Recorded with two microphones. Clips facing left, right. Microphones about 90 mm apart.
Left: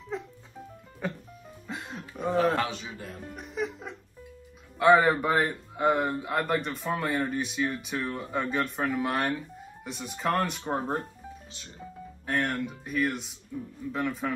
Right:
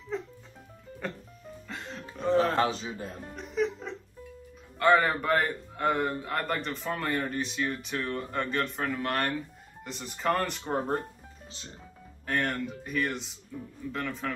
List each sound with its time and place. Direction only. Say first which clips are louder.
0.1 s music: right 1 dB; 5° left (ahead or behind)
1.0 s a man's voice: left 3 dB; 5° left (ahead or behind)
1.7 s music: left 3 dB; 10° left (ahead or behind)
2.5 s a man's voice: right 2 dB; 30° right (ahead or behind)
3.3 s music: right 4 dB; 5° left (ahead or behind)
4.7 s a man's voice: left 3 dB; 10° left (ahead or behind)
12.3 s a man's voice: left 1 dB; centre (ahead or behind)